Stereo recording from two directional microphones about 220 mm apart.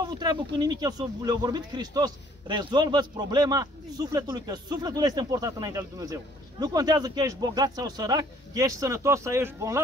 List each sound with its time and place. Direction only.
0.0 s speech: 20° right (ahead or behind)